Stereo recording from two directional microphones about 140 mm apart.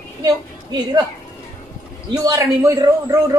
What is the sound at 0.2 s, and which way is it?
Speech, 30° right (ahead or behind).